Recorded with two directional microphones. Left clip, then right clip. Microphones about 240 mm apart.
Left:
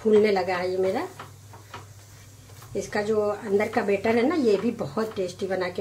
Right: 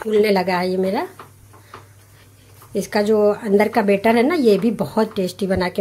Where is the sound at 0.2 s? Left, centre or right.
Right.